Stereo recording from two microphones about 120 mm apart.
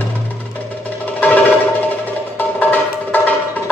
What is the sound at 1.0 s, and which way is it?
Music, 15° left (ahead or behind).